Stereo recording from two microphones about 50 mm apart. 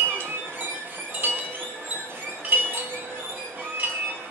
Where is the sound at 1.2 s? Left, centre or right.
Right.